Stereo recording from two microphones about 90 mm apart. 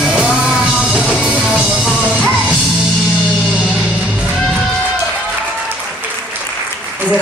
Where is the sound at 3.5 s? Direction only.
15° right (ahead or behind).